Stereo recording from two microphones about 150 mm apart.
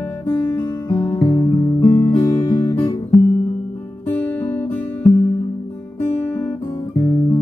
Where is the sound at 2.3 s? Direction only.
25° left (ahead or behind).